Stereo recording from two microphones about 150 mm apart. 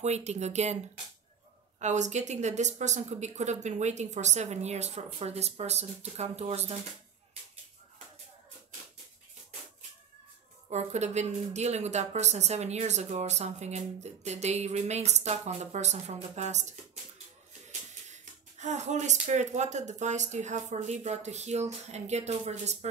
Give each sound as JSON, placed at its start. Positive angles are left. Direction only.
{"t": 0.0, "sound": "speech", "side_deg": -45}
{"t": 1.8, "sound": "speech", "side_deg": -50}
{"t": 10.7, "sound": "speech", "side_deg": -50}